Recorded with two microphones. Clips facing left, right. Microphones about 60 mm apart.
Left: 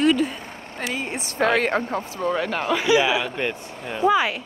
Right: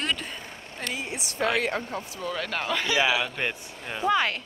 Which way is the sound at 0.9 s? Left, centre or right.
Left.